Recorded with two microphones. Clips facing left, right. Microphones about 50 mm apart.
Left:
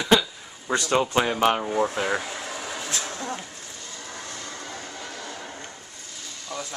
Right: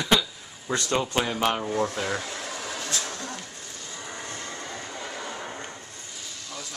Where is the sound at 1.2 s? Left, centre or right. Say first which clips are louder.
Left 4 dB; centre.